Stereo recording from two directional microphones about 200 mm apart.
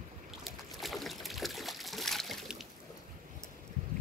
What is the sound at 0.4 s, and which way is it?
Trickle, centre (ahead or behind).